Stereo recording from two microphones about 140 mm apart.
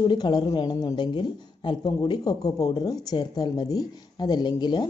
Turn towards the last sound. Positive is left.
turn(degrees=30)  # may be behind; listen again after turning